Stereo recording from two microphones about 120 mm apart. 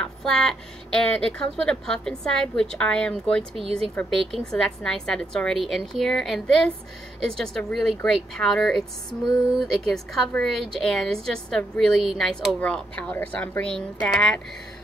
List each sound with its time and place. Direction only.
0.0 s a woman's voice: 5° left (ahead or behind)
3.5 s speech: 50° right (ahead or behind)
3.9 s speech: 15° left (ahead or behind)
4.3 s a woman's voice: centre (ahead or behind)